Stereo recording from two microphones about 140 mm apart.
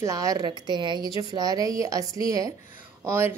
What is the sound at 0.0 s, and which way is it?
A woman's voice, 25° right (ahead or behind).